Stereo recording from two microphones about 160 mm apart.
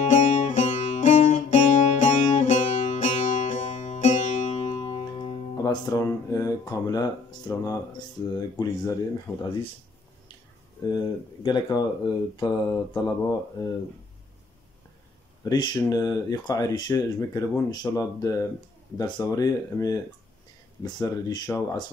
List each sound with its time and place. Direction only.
0.0 s music: 50° left (ahead or behind)
5.6 s speech: 25° left (ahead or behind)
9.3 s speech: 10° left (ahead or behind)
11.4 s speech: 25° left (ahead or behind)
15.4 s speech: 25° left (ahead or behind)